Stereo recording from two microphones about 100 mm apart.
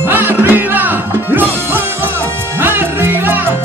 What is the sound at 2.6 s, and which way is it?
Music, 20° right (ahead or behind).